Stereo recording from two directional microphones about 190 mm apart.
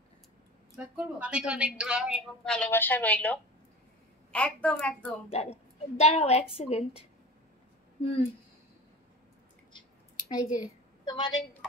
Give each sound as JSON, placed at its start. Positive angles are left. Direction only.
{"t": 0.9, "sound": "a woman's voice", "side_deg": -5}
{"t": 5.3, "sound": "a woman's voice", "side_deg": 30}
{"t": 8.0, "sound": "speech", "side_deg": 30}
{"t": 9.8, "sound": "a sound", "side_deg": 25}
{"t": 10.6, "sound": "a woman's voice", "side_deg": 20}